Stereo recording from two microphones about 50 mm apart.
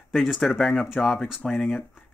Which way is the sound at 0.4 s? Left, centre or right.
Centre.